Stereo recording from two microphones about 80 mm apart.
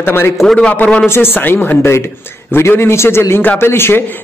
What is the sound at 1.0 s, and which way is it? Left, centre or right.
A man's voice, left.